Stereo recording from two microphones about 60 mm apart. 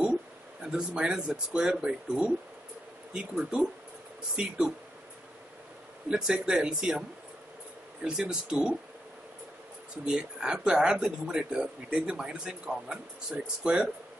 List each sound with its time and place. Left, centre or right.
0.7 s speech: centre
6.0 s speech: centre
10.1 s speech: centre